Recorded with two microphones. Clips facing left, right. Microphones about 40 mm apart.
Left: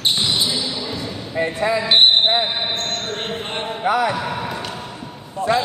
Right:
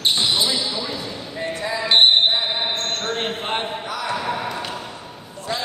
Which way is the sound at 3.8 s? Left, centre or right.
Left.